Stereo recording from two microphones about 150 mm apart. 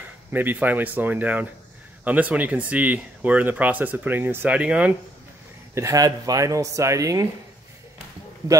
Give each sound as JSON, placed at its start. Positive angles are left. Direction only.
{"t": 0.3, "sound": "speech", "side_deg": -10}
{"t": 5.8, "sound": "speech", "side_deg": -20}